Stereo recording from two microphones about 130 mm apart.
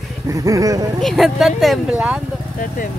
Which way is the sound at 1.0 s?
Centre (ahead or behind).